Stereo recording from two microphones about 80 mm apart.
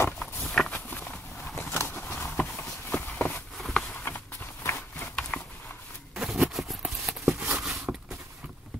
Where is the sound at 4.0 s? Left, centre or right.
Left.